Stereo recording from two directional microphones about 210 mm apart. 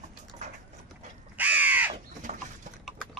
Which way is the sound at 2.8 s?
Centre (ahead or behind).